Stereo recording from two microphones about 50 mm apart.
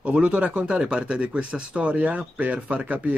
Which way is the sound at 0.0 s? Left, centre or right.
Right.